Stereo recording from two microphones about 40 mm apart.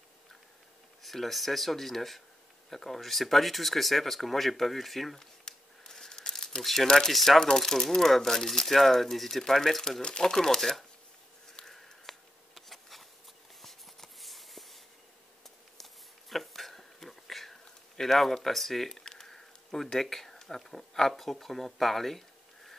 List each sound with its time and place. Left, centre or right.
1.0 s speech: centre
5.4 s crumpling: centre
6.6 s speech: centre
7.2 s speech: centre
11.6 s a sound: centre
13.6 s writing: centre
15.8 s a sound: centre
19.0 s speech: centre